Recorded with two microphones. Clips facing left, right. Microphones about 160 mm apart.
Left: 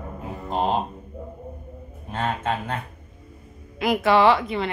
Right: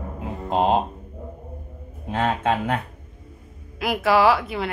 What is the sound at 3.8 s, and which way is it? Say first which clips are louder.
Speech: left 1 dB; centre (ahead or behind).